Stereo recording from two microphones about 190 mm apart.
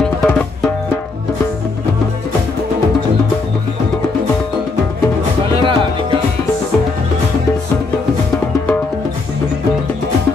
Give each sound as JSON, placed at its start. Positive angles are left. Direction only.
{"t": 0.0, "sound": "music", "side_deg": 5}
{"t": 5.6, "sound": "music", "side_deg": -25}